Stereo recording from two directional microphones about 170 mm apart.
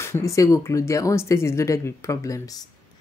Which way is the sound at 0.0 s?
15° left (ahead or behind).